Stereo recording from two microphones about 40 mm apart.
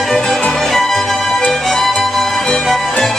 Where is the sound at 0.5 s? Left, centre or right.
Centre.